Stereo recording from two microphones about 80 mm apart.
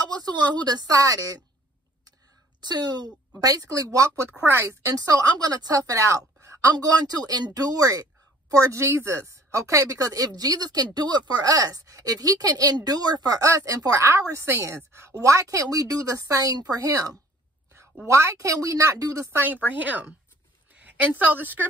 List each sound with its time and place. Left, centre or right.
0.1 s a woman's voice: right
2.6 s speech: right
4.2 s a woman's voice: right
4.8 s speech: right
6.7 s speech: right
18.0 s a woman's voice: right
19.3 s a woman's voice: right